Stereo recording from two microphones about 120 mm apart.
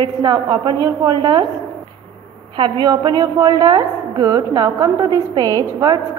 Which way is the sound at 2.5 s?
40° right (ahead or behind).